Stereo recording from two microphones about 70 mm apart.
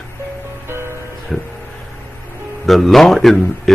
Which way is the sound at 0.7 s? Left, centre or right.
Right.